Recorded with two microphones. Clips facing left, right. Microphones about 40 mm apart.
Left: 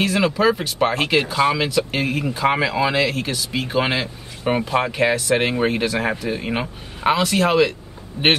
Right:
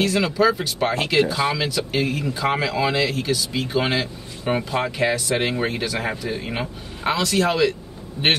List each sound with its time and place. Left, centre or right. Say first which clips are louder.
0.0 s a man's voice: left 1 dB; centre